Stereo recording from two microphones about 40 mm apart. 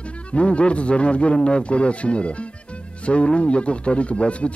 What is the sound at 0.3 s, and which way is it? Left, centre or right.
Speech, left.